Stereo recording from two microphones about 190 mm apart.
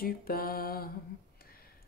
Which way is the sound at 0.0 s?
50° left (ahead or behind).